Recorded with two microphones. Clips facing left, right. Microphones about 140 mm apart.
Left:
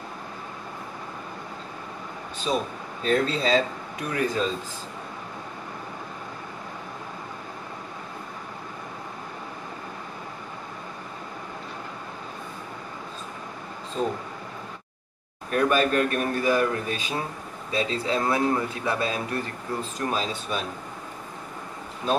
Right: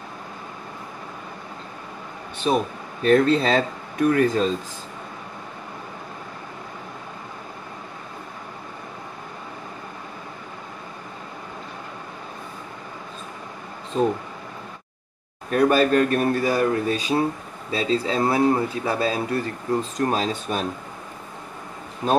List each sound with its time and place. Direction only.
2.4 s speech: 50° right (ahead or behind)
15.5 s speech: 35° right (ahead or behind)